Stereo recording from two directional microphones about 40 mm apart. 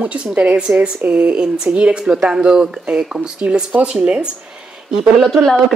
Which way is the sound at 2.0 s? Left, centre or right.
Centre.